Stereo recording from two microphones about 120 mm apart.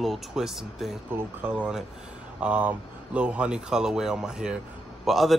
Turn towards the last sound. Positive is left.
turn(degrees=0)  # may be behind; listen again after turning